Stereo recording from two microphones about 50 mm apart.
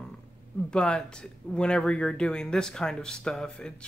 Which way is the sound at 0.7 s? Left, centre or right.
Centre.